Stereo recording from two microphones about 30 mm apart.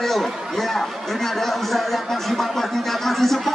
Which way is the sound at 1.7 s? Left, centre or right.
Centre.